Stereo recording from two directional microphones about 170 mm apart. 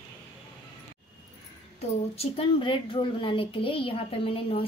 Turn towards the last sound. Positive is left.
turn(degrees=35)  # may be behind; listen again after turning